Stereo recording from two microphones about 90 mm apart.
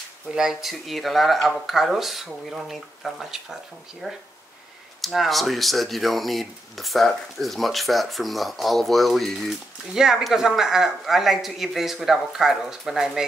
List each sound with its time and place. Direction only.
0.3 s speech: 5° right (ahead or behind)